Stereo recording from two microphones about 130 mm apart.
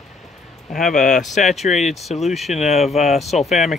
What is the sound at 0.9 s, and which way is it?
Speech, centre (ahead or behind).